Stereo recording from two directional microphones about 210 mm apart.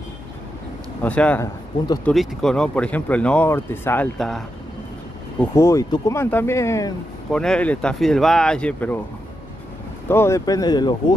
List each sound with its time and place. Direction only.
1.0 s speech: 5° left (ahead or behind)
5.4 s speech: 15° left (ahead or behind)
10.0 s speech: 10° left (ahead or behind)